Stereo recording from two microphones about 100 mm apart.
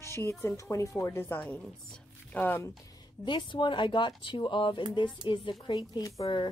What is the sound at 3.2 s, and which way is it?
A woman's voice, 50° left (ahead or behind).